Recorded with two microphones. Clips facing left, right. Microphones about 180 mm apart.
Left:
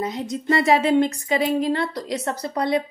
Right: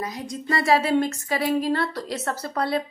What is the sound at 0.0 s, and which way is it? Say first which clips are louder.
Speech: left 5 dB; 25° left (ahead or behind).